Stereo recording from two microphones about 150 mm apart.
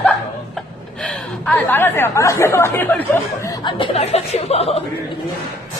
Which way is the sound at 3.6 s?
35° left (ahead or behind).